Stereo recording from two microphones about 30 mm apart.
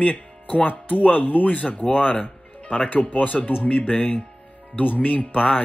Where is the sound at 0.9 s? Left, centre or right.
Left.